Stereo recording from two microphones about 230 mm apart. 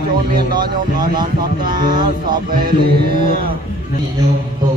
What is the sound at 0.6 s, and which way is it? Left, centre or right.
Speech, centre.